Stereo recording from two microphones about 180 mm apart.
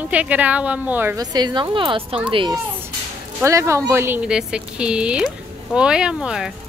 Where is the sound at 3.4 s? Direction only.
15° right (ahead or behind).